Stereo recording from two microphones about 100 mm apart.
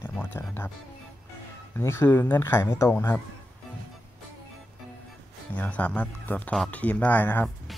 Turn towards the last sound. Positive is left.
turn(degrees=20)  # may be behind; listen again after turning